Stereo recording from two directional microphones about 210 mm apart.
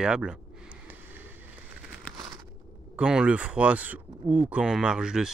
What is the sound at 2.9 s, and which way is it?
Speech, 5° right (ahead or behind).